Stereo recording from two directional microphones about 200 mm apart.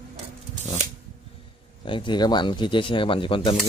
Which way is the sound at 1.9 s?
25° left (ahead or behind).